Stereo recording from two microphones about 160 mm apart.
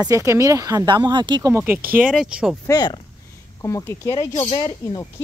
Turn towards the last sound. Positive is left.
turn(degrees=25)  # may be behind; listen again after turning